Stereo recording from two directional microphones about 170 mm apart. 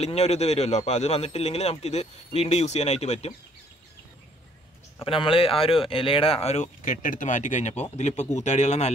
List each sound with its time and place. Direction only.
0.0 s speech: 40° left (ahead or behind)
4.9 s speech: 30° left (ahead or behind)